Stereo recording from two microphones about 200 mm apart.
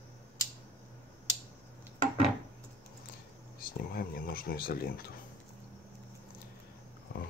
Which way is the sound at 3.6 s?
50° left (ahead or behind).